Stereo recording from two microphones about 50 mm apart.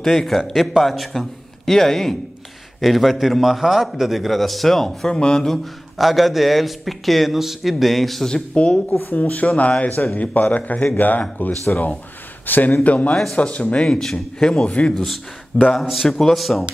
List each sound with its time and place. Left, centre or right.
0.0 s speech: centre
0.4 s a man's voice: centre
5.9 s a man's voice: centre
8.3 s speech: left
13.8 s speech: centre
14.5 s speech: left
15.0 s a man's voice: centre